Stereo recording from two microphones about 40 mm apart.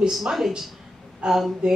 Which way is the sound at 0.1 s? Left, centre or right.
Centre.